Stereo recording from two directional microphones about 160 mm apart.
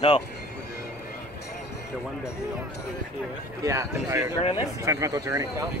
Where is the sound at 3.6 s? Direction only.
20° right (ahead or behind).